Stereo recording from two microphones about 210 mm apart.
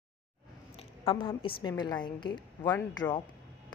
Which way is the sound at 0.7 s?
25° left (ahead or behind).